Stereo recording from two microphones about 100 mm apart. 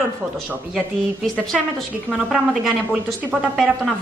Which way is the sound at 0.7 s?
5° left (ahead or behind).